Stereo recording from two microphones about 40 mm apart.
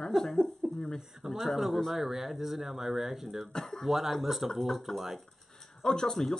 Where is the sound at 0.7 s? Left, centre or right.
Centre.